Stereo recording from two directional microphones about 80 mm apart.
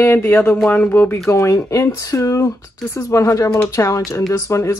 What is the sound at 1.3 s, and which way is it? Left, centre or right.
Speech, left.